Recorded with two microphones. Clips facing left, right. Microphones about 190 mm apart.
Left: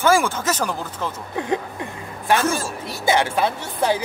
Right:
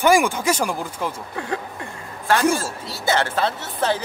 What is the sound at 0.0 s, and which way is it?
Speech, 15° right (ahead or behind).